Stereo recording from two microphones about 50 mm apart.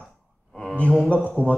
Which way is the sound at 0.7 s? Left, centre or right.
Left.